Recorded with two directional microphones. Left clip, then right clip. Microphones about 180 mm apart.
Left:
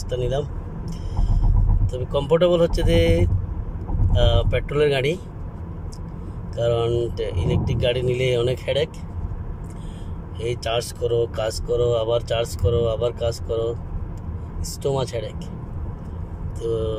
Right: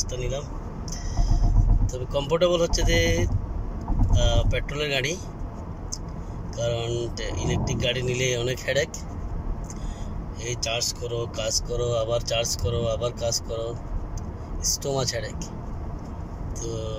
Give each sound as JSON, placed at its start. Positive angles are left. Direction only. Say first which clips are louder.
{"t": 1.9, "sound": "speech", "louder": "left 5 dB", "side_deg": 20}
{"t": 6.5, "sound": "speech", "louder": "left 7 dB", "side_deg": 20}
{"t": 10.4, "sound": "speech", "louder": "left 3 dB", "side_deg": 25}
{"t": 14.8, "sound": "speech", "louder": "left 8 dB", "side_deg": 10}
{"t": 16.6, "sound": "speech", "louder": "left 9 dB", "side_deg": 25}